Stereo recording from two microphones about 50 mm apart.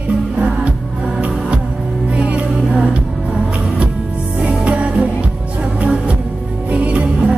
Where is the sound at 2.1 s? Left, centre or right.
Right.